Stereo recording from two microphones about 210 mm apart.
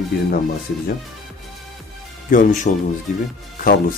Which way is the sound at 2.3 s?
40° left (ahead or behind).